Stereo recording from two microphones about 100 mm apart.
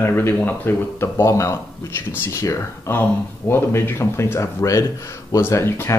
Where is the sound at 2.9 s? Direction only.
20° left (ahead or behind).